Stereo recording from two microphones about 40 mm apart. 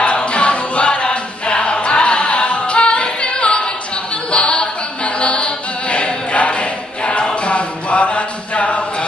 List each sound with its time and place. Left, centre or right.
0.0 s choir: left
4.3 s a capella: left